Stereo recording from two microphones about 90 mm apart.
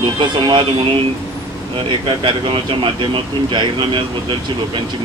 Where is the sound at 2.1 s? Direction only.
70° right (ahead or behind).